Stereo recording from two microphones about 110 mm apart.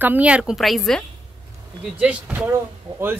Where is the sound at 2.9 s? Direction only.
55° right (ahead or behind).